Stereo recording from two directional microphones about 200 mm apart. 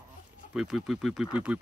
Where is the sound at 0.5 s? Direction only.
5° right (ahead or behind).